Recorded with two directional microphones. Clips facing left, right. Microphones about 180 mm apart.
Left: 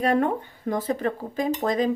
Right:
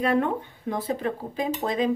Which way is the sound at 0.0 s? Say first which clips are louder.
Left 1 dB; 45° left (ahead or behind).